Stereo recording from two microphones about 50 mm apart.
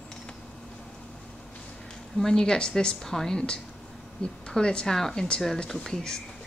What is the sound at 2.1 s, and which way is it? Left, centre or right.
A woman's voice, centre.